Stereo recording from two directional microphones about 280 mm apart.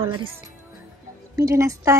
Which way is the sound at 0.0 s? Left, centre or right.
Centre.